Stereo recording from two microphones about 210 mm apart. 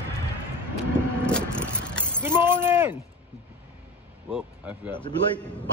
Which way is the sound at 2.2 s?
10° right (ahead or behind).